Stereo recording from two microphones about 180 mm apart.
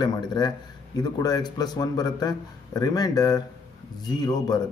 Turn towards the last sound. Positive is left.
turn(degrees=20)  # may be behind; listen again after turning